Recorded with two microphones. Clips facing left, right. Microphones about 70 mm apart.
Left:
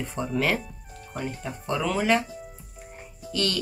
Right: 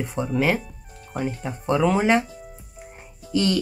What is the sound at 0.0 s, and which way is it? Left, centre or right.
Speech, centre.